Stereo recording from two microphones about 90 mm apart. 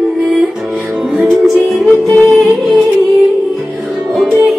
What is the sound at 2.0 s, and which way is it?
Music, 20° left (ahead or behind).